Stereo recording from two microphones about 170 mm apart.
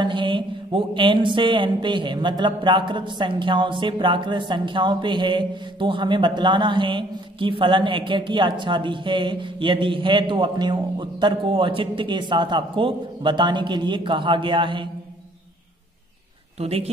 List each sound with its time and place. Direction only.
0.0 s mantra: 30° right (ahead or behind)
16.5 s a woman's voice: 40° right (ahead or behind)